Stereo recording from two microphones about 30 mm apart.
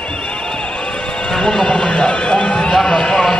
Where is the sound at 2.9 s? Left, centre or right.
Left.